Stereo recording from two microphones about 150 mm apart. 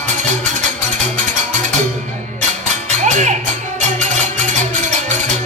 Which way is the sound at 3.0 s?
55° right (ahead or behind).